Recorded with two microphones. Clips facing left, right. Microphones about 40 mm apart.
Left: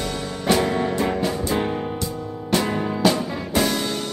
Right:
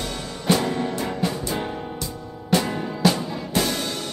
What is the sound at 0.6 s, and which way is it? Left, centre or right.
Music, centre.